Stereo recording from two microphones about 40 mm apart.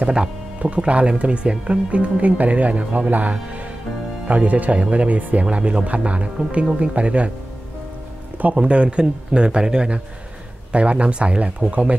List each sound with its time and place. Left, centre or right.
0.6 s speech: right
8.5 s speech: right